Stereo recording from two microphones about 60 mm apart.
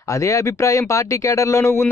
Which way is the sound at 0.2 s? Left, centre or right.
Left.